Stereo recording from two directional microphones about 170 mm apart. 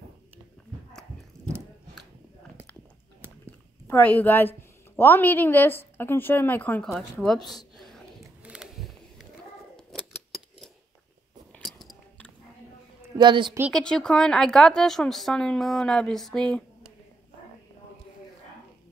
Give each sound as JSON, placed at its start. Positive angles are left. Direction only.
{"t": 1.3, "sound": "biting", "side_deg": 5}
{"t": 3.8, "sound": "a woman's voice", "side_deg": 10}
{"t": 8.4, "sound": "a sound", "side_deg": -5}
{"t": 11.5, "sound": "a sound", "side_deg": 0}
{"t": 13.2, "sound": "a woman's voice", "side_deg": -25}
{"t": 13.7, "sound": "speech", "side_deg": 5}